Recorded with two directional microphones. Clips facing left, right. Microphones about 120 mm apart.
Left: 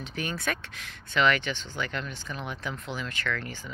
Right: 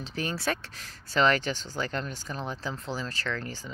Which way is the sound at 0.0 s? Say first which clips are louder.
Right 1 dB; 35° right (ahead or behind).